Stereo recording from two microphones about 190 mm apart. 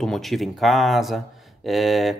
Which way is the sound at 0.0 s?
Centre (ahead or behind).